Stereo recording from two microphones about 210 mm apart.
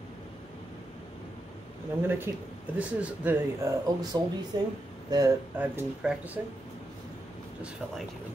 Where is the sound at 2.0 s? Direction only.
10° right (ahead or behind).